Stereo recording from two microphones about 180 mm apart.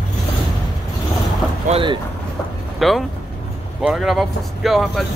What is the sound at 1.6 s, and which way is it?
Speech, 30° right (ahead or behind).